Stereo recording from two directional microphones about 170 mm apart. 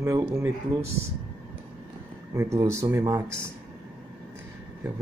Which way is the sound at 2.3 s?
15° right (ahead or behind).